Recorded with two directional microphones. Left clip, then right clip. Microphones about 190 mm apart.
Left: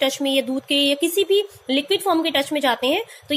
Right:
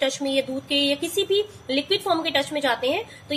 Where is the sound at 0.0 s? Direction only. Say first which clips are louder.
Left 3 dB; 50° left (ahead or behind).